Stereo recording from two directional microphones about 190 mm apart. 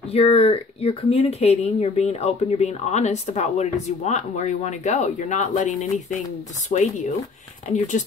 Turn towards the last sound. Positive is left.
turn(degrees=40)  # may be behind; listen again after turning